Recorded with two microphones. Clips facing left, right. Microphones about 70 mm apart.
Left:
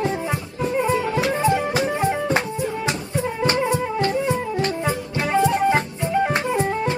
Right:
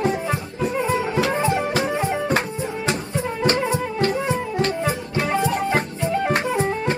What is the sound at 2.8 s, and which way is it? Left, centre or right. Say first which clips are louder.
Music: even; right.